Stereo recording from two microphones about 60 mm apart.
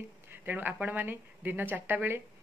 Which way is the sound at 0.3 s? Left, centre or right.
Right.